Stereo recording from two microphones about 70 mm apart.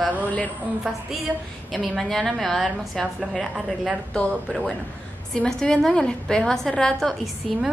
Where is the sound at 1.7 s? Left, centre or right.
Centre.